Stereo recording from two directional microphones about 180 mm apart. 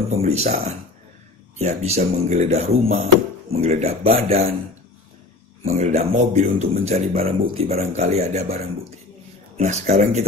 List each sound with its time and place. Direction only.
0.1 s speech: 35° right (ahead or behind)
5.6 s speech: 35° right (ahead or behind)
9.6 s speech: 40° right (ahead or behind)